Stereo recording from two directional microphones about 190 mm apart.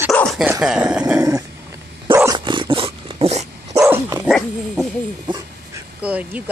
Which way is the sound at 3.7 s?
15° right (ahead or behind).